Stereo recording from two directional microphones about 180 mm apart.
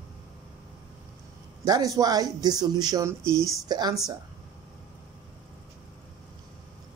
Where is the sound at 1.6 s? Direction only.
20° right (ahead or behind).